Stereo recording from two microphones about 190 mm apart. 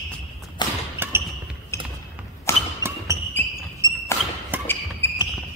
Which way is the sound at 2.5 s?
15° left (ahead or behind).